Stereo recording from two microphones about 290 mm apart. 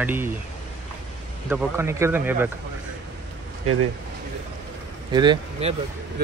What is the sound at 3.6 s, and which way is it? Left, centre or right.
Speech, right.